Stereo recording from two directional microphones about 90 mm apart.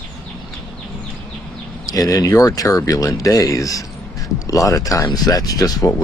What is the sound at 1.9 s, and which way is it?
Speech, 40° left (ahead or behind).